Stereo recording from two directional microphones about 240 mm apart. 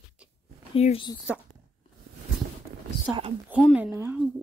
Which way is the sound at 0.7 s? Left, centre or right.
Left.